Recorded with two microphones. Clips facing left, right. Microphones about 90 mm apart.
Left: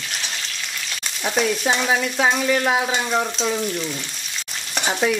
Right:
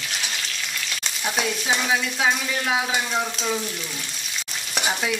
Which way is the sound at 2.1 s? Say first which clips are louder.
Left 5 dB; 50° left (ahead or behind).